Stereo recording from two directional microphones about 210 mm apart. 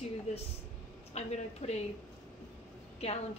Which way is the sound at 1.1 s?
30° left (ahead or behind).